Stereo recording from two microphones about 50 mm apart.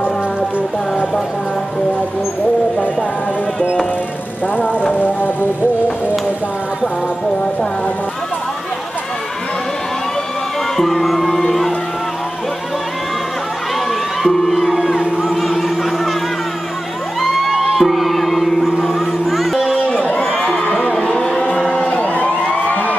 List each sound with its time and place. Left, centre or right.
4.9 s music: left
10.8 s music: centre
14.2 s music: centre
15.0 s music: centre
15.4 s music: centre
17.2 s music: centre
19.9 s a sound: left
20.2 s crowd: centre
20.4 s crowd: centre
20.9 s a sound: centre
21.8 s a sound: left